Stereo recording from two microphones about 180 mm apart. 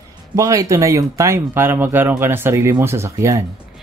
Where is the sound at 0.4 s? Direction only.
20° right (ahead or behind).